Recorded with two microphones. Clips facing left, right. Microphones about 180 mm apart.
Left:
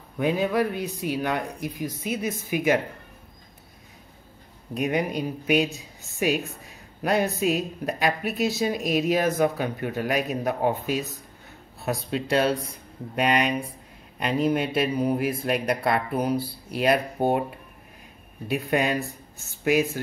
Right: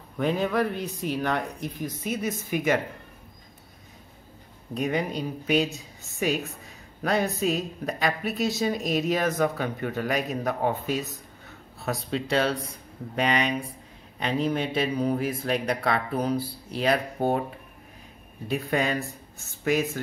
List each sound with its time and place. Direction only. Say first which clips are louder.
0.2 s speech: left 1 dB; 10° left (ahead or behind)
4.7 s speech: left 2 dB; 10° left (ahead or behind)
18.5 s speech: left 2 dB; 10° left (ahead or behind)